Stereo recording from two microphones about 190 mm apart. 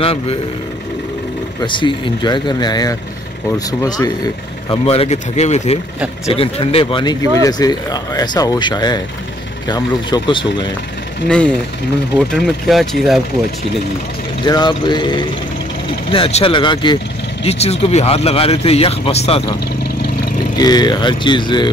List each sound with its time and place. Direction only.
0.0 s speech: 30° left (ahead or behind)
1.6 s speech: 25° left (ahead or behind)
4.6 s speech: 30° left (ahead or behind)
11.2 s speech: 5° left (ahead or behind)
14.4 s speech: 25° left (ahead or behind)
20.5 s speech: 20° left (ahead or behind)